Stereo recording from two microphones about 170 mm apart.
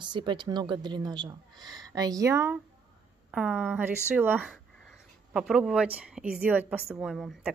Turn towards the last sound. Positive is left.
turn(degrees=0)  # may be behind; listen again after turning